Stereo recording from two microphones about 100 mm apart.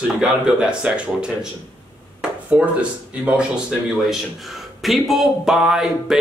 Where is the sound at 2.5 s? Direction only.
20° right (ahead or behind).